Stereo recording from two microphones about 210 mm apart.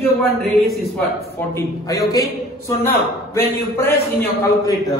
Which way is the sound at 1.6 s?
15° left (ahead or behind).